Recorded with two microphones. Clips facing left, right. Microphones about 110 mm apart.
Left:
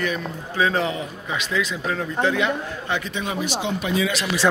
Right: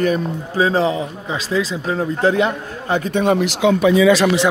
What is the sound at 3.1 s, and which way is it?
Speech, 55° right (ahead or behind).